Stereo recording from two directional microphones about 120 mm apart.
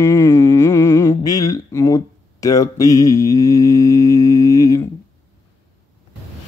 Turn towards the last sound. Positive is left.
turn(degrees=25)  # may be behind; listen again after turning